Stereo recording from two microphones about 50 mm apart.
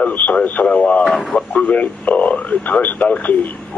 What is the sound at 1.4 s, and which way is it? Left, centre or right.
Speech, left.